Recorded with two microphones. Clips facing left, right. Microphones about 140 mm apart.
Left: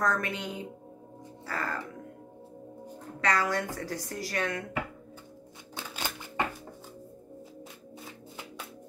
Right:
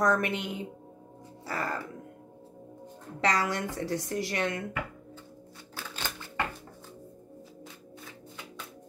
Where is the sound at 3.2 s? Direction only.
20° right (ahead or behind).